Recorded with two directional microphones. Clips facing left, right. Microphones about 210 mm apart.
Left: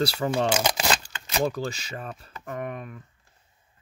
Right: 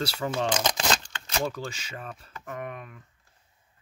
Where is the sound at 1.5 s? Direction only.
35° left (ahead or behind).